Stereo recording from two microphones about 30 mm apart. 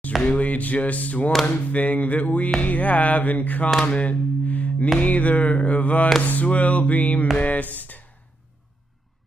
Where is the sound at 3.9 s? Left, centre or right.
Left.